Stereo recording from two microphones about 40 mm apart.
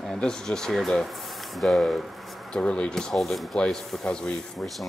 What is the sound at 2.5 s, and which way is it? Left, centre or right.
Speech, left.